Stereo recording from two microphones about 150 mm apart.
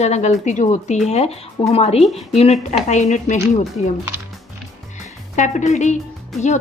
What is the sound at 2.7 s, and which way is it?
Speech, 50° left (ahead or behind).